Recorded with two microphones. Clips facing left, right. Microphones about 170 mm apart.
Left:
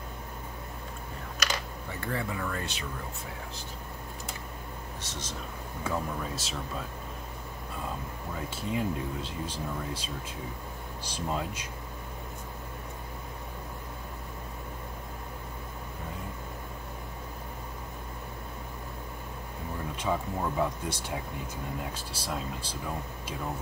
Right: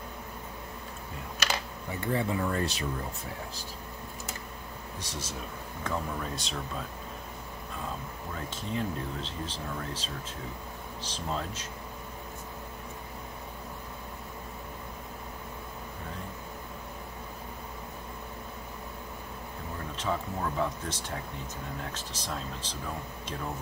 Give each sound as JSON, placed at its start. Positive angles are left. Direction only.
{"t": 2.0, "sound": "speech", "side_deg": -20}
{"t": 2.5, "sound": "speech", "side_deg": -35}
{"t": 5.0, "sound": "speech", "side_deg": -10}
{"t": 5.9, "sound": "speech", "side_deg": 5}
{"t": 8.5, "sound": "speech", "side_deg": 10}
{"t": 20.0, "sound": "speech", "side_deg": 10}